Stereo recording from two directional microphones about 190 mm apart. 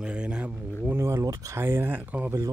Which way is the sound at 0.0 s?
5° right (ahead or behind).